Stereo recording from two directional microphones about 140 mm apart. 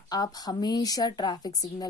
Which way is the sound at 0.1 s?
30° left (ahead or behind).